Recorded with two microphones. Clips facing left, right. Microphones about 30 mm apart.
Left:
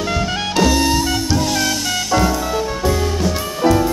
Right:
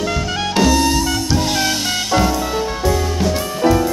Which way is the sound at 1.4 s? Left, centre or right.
Right.